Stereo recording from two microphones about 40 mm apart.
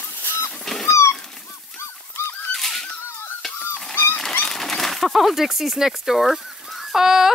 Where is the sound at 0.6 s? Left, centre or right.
Centre.